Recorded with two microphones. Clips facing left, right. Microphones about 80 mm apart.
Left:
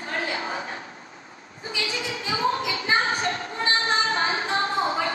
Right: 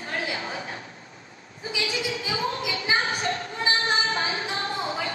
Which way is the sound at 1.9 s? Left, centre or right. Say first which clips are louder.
Even; left.